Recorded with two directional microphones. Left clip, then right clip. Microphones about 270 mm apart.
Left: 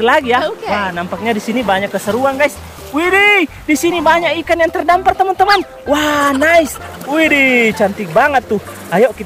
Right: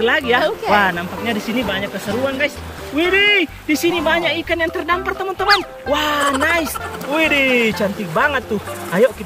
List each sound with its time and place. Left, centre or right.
0.0 s speech: centre
0.4 s speech: centre
1.2 s speech: centre